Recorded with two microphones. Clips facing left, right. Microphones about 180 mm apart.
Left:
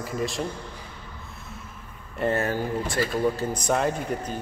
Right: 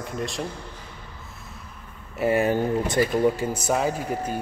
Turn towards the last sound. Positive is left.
turn(degrees=-5)  # may be behind; listen again after turning